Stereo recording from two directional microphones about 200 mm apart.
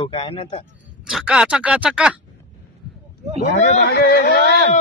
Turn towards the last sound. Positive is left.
turn(degrees=50)  # may be behind; listen again after turning